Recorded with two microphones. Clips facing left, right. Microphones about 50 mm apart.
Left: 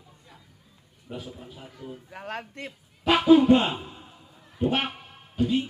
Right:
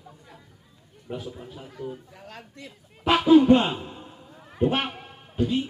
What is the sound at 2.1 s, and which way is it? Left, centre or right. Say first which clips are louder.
Speech: left 8 dB; left.